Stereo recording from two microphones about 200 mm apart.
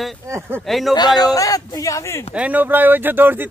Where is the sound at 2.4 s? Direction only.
10° right (ahead or behind).